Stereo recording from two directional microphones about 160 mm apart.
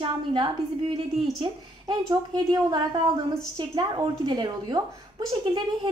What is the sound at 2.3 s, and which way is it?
A woman's voice, 25° right (ahead or behind).